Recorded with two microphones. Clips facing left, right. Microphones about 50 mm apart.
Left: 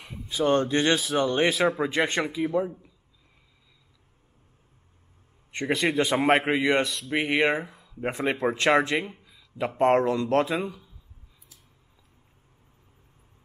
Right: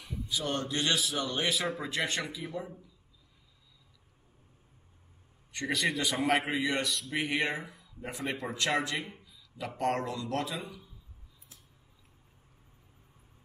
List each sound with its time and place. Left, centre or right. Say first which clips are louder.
0.0 s speech: left 9 dB; left
5.5 s speech: left 5 dB; left